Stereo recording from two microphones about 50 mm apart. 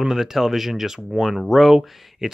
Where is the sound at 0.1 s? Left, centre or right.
Centre.